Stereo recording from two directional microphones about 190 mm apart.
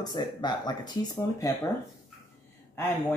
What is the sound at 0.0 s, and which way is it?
Speech, 20° left (ahead or behind).